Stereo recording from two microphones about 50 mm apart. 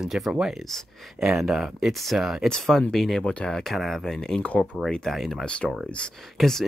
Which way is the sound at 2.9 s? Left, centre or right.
Centre.